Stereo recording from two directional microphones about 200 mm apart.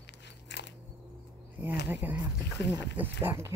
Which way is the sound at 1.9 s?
10° right (ahead or behind).